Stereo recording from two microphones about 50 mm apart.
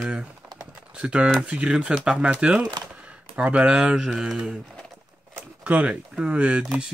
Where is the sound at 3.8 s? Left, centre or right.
Centre.